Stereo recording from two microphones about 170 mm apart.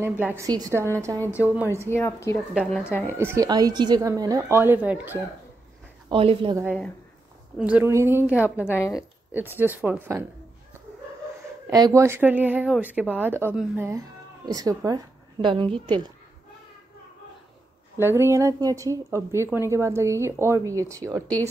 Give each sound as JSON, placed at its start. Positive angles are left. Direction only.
{"t": 0.0, "sound": "a woman's voice", "side_deg": -10}
{"t": 1.9, "sound": "speech", "side_deg": 15}
{"t": 2.3, "sound": "a woman's voice", "side_deg": 0}
{"t": 2.9, "sound": "speech", "side_deg": 10}
{"t": 3.2, "sound": "speech", "side_deg": -15}
{"t": 3.4, "sound": "speech", "side_deg": -25}
{"t": 6.0, "sound": "speech", "side_deg": -30}
{"t": 7.5, "sound": "speech", "side_deg": -5}
{"t": 8.6, "sound": "speech", "side_deg": 15}
{"t": 8.9, "sound": "speech", "side_deg": -10}
{"t": 11.7, "sound": "speech", "side_deg": -20}
{"t": 17.9, "sound": "speech", "side_deg": -15}